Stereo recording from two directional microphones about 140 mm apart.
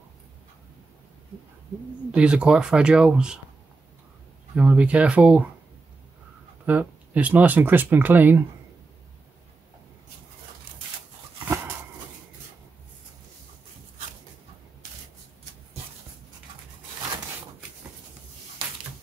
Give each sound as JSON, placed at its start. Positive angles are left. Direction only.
{"t": 2.1, "sound": "speech", "side_deg": -5}
{"t": 4.6, "sound": "speech", "side_deg": -10}
{"t": 6.6, "sound": "speech", "side_deg": -10}
{"t": 11.4, "sound": "a sound", "side_deg": -20}